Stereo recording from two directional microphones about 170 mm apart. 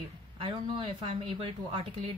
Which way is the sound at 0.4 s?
30° right (ahead or behind).